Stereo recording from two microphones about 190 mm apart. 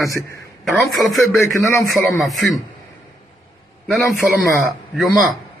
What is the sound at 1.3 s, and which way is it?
Speech, 15° left (ahead or behind).